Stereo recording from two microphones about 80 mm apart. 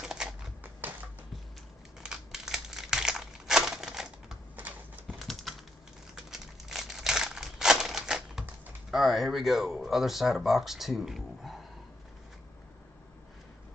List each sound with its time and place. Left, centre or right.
0.0 s typewriter: centre
0.8 s music: right
2.0 s crumpling: centre
4.6 s horse: right
5.2 s typing: centre
6.1 s crumpling: centre
8.9 s speech: centre